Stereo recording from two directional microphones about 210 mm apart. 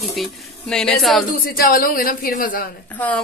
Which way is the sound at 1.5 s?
40° left (ahead or behind).